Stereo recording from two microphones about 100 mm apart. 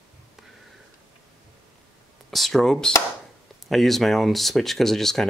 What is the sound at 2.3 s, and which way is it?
Speech, centre (ahead or behind).